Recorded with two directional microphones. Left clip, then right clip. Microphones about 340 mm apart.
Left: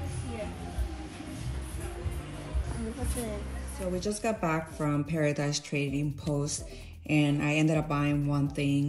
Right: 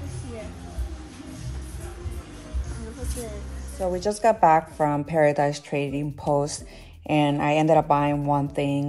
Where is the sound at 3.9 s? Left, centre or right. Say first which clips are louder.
Right 5 dB; centre.